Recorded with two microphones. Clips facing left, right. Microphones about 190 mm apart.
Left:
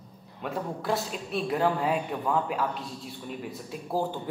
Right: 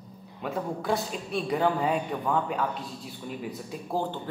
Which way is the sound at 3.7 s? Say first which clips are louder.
Left 2 dB; 5° left (ahead or behind).